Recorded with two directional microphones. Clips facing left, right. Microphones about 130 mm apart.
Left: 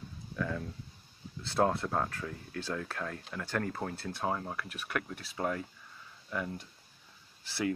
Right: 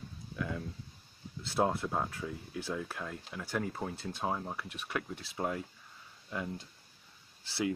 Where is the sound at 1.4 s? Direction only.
10° right (ahead or behind).